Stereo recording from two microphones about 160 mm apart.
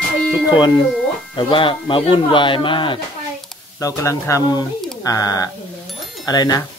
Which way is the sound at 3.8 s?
20° left (ahead or behind).